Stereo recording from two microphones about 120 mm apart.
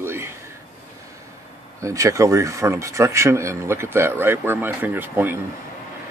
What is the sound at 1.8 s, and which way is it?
Speech, 25° right (ahead or behind).